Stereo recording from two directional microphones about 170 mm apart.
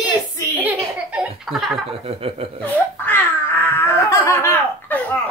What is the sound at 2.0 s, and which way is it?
Speech, 35° right (ahead or behind).